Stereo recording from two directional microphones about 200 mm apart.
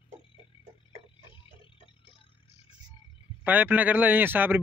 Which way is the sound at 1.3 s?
25° left (ahead or behind).